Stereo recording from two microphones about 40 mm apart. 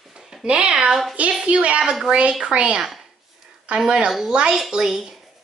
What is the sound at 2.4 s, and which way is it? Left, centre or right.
A woman's voice, right.